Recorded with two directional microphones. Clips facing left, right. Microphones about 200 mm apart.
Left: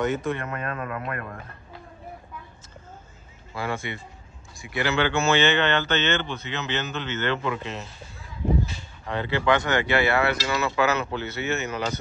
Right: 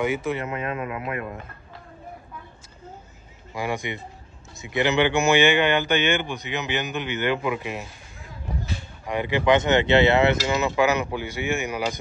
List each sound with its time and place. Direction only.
0.0 s speech: 10° right (ahead or behind)
3.5 s speech: 15° right (ahead or behind)
9.0 s speech: 15° right (ahead or behind)